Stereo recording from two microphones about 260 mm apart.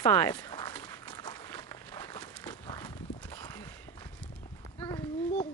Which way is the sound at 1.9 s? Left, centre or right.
Centre.